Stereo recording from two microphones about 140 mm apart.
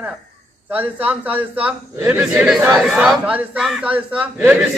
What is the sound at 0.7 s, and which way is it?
A man's voice, 10° right (ahead or behind).